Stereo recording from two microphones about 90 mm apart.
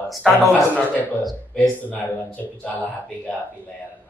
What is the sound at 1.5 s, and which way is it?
Speech, 20° left (ahead or behind).